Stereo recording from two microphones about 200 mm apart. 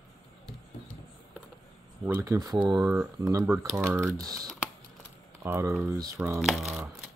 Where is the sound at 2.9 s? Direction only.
5° right (ahead or behind).